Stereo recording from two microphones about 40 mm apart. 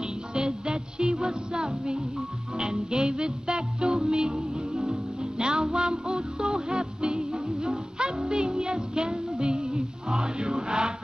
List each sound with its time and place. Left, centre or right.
0.0 s music: centre
4.4 s music: centre
5.4 s music: right